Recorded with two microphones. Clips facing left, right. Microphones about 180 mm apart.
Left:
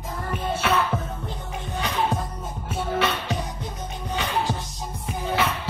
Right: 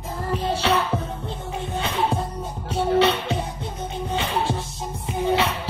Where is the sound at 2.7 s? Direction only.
25° right (ahead or behind).